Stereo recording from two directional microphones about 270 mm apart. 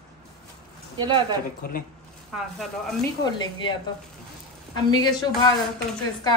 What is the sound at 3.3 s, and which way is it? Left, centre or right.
Speech, centre.